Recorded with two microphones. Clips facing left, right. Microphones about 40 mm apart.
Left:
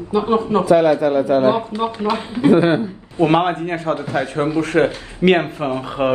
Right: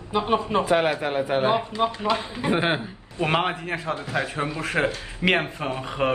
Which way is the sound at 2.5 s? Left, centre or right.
Right.